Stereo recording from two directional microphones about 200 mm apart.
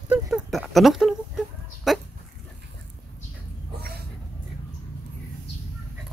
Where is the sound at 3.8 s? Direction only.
55° right (ahead or behind).